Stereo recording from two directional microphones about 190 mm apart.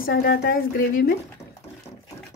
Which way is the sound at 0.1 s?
60° left (ahead or behind).